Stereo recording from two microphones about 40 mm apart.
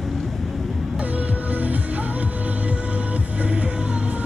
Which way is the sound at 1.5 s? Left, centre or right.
Right.